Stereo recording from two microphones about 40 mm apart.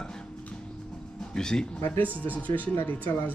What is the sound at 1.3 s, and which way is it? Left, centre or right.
Speech, centre.